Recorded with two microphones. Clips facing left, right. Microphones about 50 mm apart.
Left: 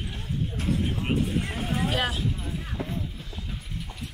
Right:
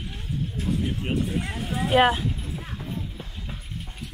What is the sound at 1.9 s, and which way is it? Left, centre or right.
Clip-clop, right.